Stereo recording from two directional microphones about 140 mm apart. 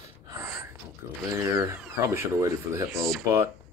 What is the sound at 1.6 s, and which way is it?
Speech, 20° right (ahead or behind).